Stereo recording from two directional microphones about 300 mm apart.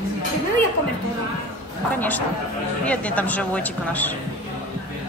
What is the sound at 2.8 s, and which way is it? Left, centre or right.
A woman's voice, centre.